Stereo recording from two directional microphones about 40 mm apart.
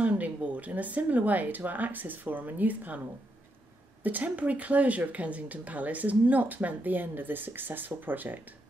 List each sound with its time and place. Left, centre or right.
0.0 s speech: right
4.0 s speech: right